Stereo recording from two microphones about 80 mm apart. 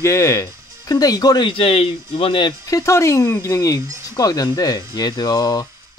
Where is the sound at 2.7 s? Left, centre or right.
Left.